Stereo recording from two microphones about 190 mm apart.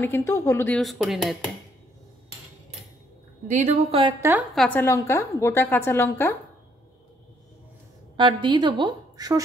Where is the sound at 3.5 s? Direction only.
40° right (ahead or behind).